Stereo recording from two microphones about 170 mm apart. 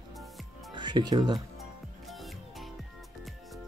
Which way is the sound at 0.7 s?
25° right (ahead or behind).